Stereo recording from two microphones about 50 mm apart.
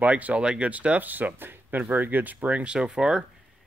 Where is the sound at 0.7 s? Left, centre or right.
Right.